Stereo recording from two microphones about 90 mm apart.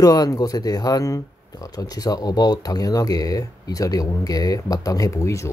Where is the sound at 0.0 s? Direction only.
45° left (ahead or behind).